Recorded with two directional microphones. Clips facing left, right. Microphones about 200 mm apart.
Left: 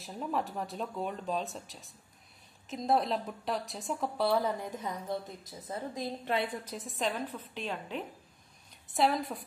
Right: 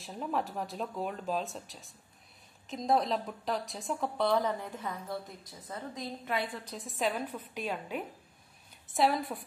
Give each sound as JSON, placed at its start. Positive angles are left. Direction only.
{"t": 0.0, "sound": "a woman's voice", "side_deg": 0}
{"t": 6.7, "sound": "a woman's voice", "side_deg": 0}